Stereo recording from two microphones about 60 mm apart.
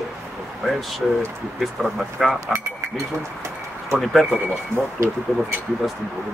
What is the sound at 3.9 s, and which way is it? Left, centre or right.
Speech, centre.